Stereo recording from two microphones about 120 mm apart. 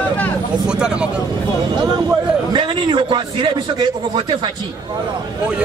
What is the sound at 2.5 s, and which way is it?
A man's voice, 40° right (ahead or behind).